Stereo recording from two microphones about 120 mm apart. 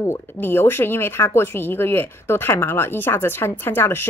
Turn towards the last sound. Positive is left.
turn(degrees=20)  # may be behind; listen again after turning